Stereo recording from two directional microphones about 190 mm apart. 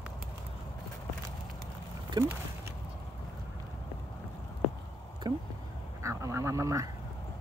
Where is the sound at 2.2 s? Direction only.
20° right (ahead or behind).